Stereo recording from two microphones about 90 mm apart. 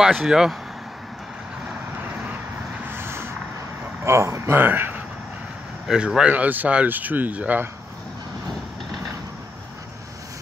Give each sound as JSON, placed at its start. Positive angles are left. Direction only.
{"t": 0.1, "sound": "speech", "side_deg": -5}
{"t": 2.9, "sound": "vehicle", "side_deg": -25}
{"t": 4.0, "sound": "speech", "side_deg": -30}
{"t": 5.9, "sound": "speech", "side_deg": -10}